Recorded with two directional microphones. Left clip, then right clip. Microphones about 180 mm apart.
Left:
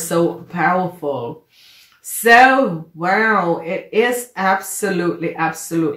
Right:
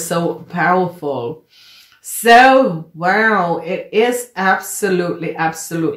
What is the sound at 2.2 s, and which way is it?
Speech, 30° right (ahead or behind).